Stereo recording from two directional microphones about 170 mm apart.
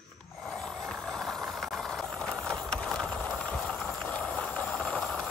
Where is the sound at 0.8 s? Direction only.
Centre (ahead or behind).